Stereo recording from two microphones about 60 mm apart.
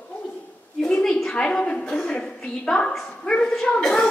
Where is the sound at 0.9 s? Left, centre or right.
Centre.